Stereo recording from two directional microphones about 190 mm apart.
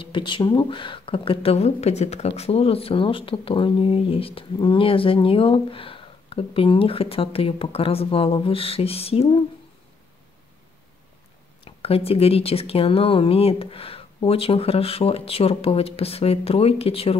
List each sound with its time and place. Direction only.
0.0 s speech: 25° left (ahead or behind)
11.6 s speech: 30° left (ahead or behind)